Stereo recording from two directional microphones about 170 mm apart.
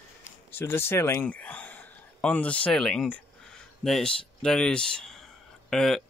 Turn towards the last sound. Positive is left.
turn(degrees=0)  # may be behind; listen again after turning